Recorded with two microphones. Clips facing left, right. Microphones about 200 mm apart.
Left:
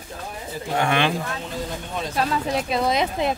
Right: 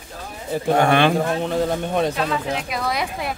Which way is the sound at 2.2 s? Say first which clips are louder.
Even; 40° left (ahead or behind).